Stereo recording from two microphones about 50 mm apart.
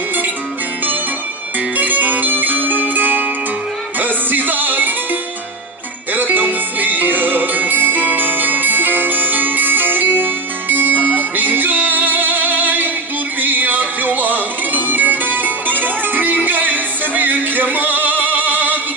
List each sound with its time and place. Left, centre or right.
1.8 s zither: right
4.0 s music: right
6.1 s music: right